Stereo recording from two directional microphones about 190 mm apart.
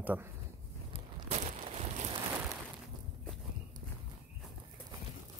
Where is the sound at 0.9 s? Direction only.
35° right (ahead or behind).